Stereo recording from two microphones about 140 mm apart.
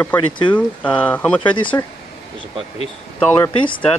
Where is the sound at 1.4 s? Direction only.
35° left (ahead or behind).